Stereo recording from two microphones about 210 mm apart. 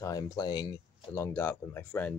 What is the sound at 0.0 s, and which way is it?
Speech, 20° left (ahead or behind).